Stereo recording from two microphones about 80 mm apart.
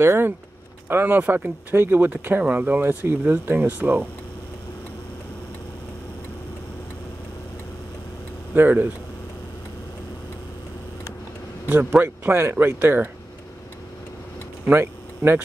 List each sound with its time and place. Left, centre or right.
0.0 s speech: right
8.5 s speech: right
12.0 s speech: right
14.7 s speech: right